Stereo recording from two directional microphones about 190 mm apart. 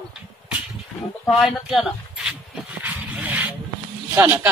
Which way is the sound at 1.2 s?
Centre (ahead or behind).